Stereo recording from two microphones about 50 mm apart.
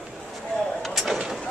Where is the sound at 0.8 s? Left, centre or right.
Centre.